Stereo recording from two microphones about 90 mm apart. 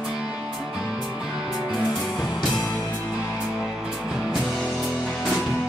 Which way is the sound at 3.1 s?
15° right (ahead or behind).